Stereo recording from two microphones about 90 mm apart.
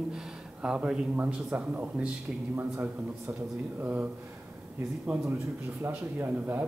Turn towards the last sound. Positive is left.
turn(degrees=-25)  # may be behind; listen again after turning